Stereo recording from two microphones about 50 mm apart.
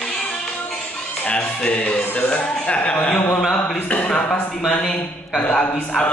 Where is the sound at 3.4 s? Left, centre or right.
Centre.